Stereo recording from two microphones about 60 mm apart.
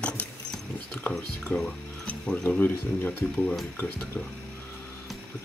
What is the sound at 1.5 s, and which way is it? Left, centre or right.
Speech, left.